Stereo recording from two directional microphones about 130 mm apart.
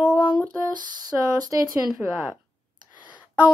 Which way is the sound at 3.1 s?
10° right (ahead or behind).